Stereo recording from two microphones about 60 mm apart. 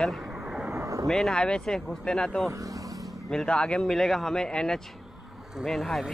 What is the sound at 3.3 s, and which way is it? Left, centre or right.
A man's voice, centre.